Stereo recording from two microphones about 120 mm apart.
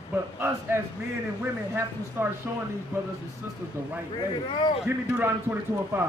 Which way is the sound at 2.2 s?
20° right (ahead or behind).